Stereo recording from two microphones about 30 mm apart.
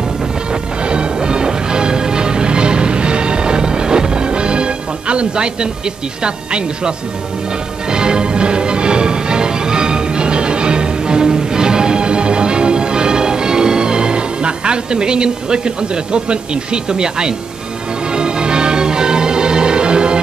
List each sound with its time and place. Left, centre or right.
0.8 s music: right
6.2 s speech: right
7.9 s music: right